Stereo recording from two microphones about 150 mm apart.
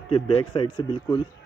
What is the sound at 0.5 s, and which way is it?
Speech, 35° left (ahead or behind).